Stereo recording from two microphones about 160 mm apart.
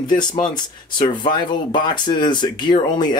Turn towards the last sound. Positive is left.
turn(degrees=25)  # may be behind; listen again after turning